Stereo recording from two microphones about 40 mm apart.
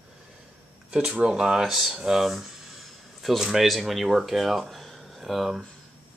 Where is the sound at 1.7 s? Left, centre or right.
Centre.